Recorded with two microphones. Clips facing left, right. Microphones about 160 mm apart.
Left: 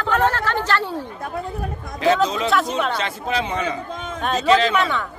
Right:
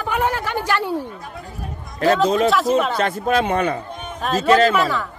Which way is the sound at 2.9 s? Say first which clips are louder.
Right 5 dB; 50° right (ahead or behind).